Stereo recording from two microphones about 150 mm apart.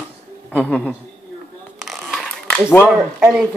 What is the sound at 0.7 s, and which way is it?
Speech, 5° right (ahead or behind).